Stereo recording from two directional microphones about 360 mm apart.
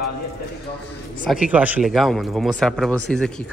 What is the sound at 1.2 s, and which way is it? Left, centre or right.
Speech, centre.